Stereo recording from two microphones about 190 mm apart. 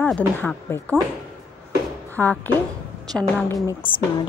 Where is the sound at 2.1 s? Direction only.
10° left (ahead or behind).